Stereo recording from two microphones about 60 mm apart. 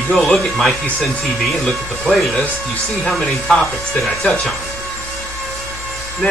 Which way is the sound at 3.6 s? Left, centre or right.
Centre.